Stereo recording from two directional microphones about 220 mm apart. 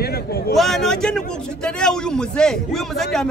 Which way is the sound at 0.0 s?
45° left (ahead or behind).